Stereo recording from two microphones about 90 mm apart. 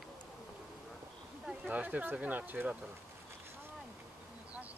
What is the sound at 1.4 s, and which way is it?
Speech, 15° right (ahead or behind).